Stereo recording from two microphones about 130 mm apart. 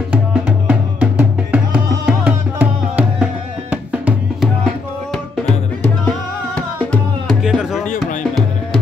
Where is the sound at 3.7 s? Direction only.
10° right (ahead or behind).